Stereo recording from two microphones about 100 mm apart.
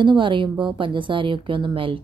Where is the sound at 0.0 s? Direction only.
55° right (ahead or behind).